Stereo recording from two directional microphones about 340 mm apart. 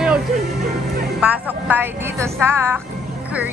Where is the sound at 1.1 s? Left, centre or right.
Centre.